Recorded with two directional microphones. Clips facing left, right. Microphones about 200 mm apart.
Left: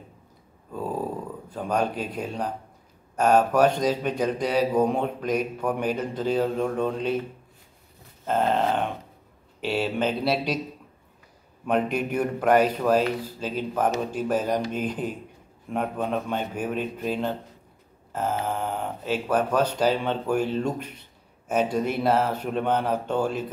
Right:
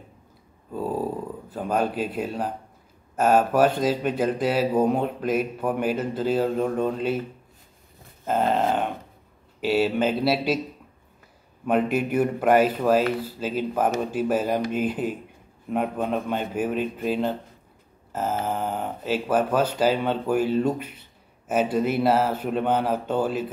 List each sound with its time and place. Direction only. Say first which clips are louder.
1.5 s speech: right 1 dB; 5° right (ahead or behind)
8.3 s speech: right 1 dB; 5° right (ahead or behind)
11.6 s speech: right 2 dB; 5° right (ahead or behind)
18.4 s speech: right 1 dB; 5° right (ahead or behind)